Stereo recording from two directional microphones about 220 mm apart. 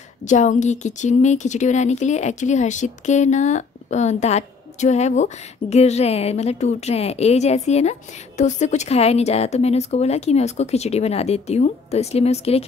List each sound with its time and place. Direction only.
0.2 s a woman's voice: 35° left (ahead or behind)